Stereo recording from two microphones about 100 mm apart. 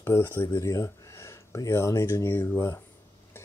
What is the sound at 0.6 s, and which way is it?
Speech, 30° left (ahead or behind).